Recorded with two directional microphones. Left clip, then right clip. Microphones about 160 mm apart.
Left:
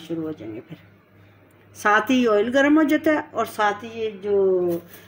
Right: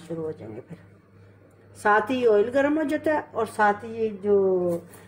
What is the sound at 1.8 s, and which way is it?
Speech, 45° left (ahead or behind).